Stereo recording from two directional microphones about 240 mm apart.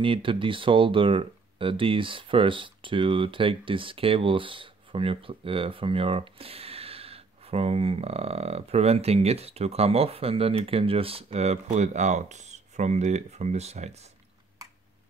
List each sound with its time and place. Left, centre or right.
0.0 s speech: right